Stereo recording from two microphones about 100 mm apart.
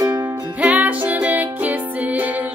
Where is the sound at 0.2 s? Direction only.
15° right (ahead or behind).